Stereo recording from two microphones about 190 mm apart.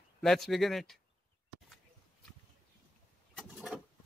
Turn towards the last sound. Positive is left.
turn(degrees=0)  # may be behind; listen again after turning